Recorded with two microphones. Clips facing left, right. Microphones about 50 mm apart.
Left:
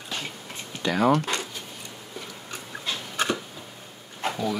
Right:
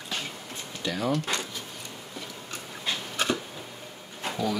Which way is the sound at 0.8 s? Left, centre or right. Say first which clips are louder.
Left 7 dB; left.